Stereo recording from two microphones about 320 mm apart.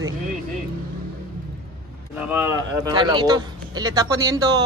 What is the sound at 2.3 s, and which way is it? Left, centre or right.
Speech, centre.